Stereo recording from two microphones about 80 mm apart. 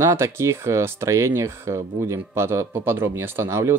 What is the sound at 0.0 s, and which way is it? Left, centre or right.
Speech, right.